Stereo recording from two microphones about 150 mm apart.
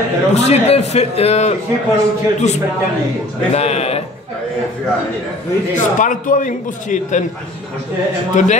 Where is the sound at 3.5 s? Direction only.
45° left (ahead or behind).